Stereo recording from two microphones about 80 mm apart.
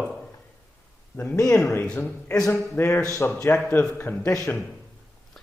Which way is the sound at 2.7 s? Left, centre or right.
Left.